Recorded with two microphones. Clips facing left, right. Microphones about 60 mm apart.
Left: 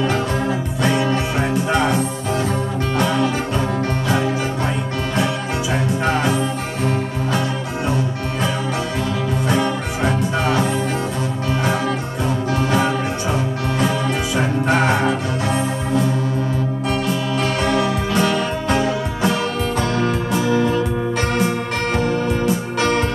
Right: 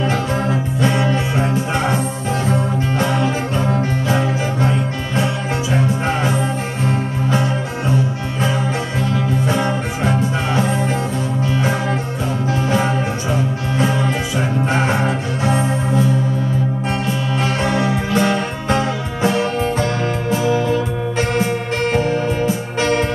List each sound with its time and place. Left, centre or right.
3.0 s music: right
12.6 s music: right
14.9 s music: right
17.6 s music: right
22.8 s music: right